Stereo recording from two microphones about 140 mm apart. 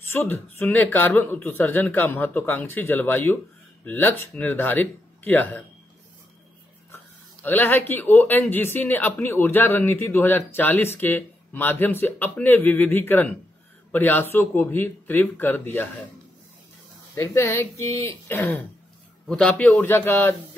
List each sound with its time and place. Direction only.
0.0 s speech: 15° left (ahead or behind)
7.4 s speech: 15° left (ahead or behind)
17.1 s speech: 20° left (ahead or behind)